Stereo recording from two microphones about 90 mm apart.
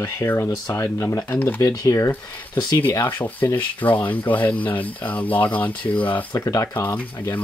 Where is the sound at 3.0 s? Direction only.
20° left (ahead or behind).